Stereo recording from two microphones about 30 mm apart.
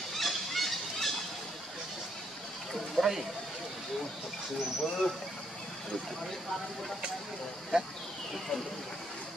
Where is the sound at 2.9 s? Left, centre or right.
Centre.